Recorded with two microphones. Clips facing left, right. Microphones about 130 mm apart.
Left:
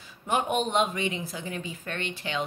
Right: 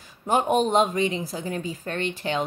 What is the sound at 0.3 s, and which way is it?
Speech, 35° right (ahead or behind).